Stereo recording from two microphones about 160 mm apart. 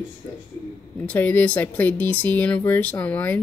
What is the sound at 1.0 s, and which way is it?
Speech, 10° left (ahead or behind).